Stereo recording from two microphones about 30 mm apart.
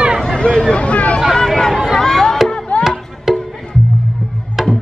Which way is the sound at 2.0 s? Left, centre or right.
Centre.